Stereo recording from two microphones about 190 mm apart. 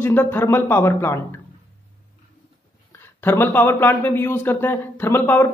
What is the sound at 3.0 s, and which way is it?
Speech, 10° left (ahead or behind).